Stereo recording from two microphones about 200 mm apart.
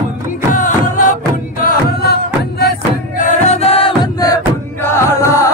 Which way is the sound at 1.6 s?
50° left (ahead or behind).